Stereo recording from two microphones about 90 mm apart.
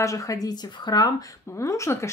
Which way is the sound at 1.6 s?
35° left (ahead or behind).